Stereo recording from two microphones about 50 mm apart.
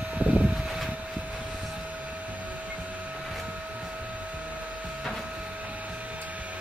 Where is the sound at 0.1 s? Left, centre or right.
Right.